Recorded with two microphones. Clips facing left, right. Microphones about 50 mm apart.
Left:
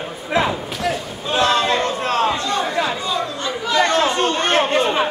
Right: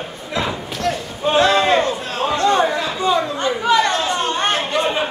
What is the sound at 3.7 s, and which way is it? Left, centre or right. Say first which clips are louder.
Chatter: left 1 dB; left.